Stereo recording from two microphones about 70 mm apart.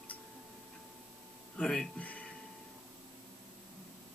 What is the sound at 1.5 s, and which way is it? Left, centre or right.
Speech, centre.